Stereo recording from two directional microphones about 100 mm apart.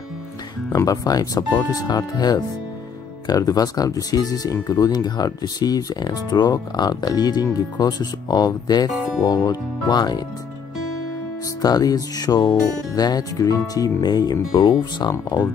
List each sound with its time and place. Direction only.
0.7 s speech: 40° left (ahead or behind)
11.6 s speech: 40° left (ahead or behind)